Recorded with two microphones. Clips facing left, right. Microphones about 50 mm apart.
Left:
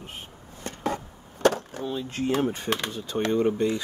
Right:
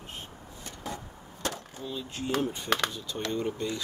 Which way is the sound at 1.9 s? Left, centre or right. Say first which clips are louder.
Left 5 dB; left.